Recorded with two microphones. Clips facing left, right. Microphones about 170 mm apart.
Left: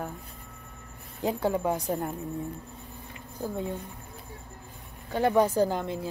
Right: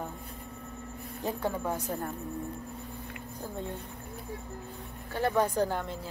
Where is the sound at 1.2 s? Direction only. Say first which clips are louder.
Left 5 dB; 15° left (ahead or behind).